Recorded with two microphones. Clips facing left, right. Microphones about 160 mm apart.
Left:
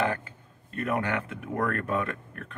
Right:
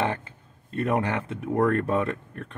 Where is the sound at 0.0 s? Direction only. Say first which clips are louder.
Right 1 dB; 30° right (ahead or behind).